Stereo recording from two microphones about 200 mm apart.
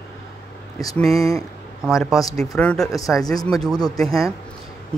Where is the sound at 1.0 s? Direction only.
Centre (ahead or behind).